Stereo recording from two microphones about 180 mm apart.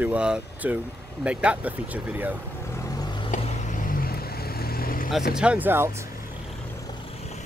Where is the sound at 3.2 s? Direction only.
50° left (ahead or behind).